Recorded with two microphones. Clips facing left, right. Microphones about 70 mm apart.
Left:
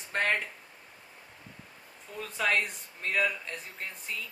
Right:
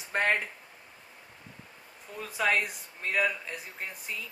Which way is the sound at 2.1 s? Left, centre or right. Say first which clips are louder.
Right 1 dB; centre.